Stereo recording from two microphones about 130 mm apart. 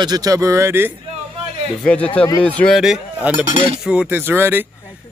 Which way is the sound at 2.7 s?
5° right (ahead or behind).